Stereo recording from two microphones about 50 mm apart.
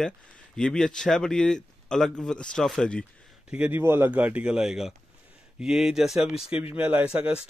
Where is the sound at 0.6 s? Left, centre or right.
Centre.